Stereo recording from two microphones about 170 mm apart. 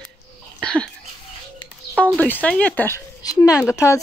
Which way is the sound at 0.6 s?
5° left (ahead or behind).